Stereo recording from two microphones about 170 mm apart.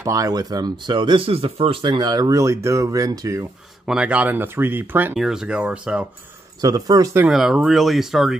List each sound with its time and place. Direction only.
0.0 s speech: 20° right (ahead or behind)
3.8 s speech: 5° right (ahead or behind)
6.6 s speech: 20° right (ahead or behind)
7.2 s speech: centre (ahead or behind)